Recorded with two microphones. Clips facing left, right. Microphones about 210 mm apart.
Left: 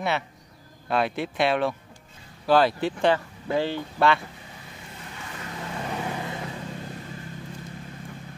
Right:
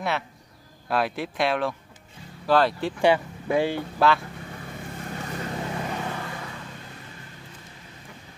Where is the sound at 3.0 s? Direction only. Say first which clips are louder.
Right 3 dB; 10° right (ahead or behind).